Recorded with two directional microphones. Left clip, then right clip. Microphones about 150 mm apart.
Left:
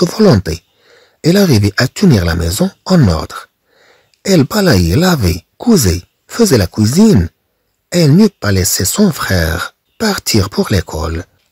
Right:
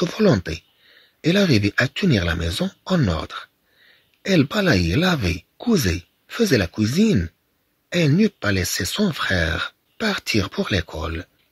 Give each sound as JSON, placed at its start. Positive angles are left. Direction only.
{"t": 0.3, "sound": "speech", "side_deg": 55}